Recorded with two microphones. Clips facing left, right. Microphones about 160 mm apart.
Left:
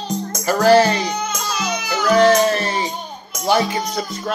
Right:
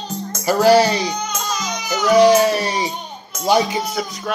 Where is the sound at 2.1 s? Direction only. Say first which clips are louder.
Right 2 dB; 15° right (ahead or behind).